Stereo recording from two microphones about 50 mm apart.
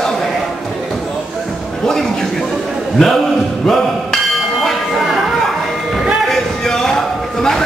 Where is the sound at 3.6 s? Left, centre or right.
Centre.